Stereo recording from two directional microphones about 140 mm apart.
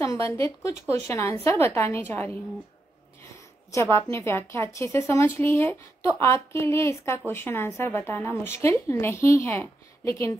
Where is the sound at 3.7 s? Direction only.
20° left (ahead or behind).